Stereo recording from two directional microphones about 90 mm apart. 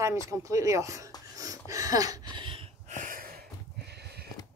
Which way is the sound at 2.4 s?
90° right.